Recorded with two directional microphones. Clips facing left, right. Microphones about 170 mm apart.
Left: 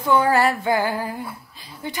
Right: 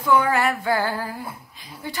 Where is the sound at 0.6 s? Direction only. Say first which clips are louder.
Left 2 dB; 15° left (ahead or behind).